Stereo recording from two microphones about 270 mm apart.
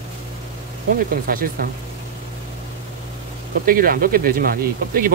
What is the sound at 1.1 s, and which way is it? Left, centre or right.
Speech, right.